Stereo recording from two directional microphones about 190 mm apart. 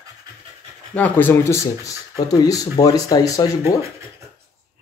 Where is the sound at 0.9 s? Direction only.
10° left (ahead or behind).